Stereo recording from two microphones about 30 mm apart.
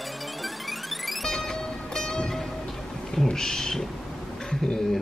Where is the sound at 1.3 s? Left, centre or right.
Centre.